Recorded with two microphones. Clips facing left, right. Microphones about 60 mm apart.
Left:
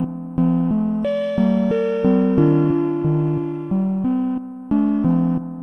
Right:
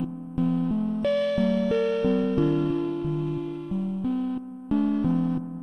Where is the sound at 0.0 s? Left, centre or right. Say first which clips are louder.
Left 7 dB; left.